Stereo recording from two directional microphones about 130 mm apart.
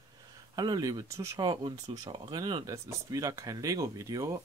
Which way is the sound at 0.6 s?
30° right (ahead or behind).